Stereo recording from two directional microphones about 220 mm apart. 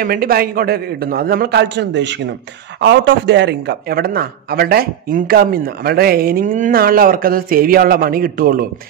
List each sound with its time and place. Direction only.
0.0 s a man's voice: 40° right (ahead or behind)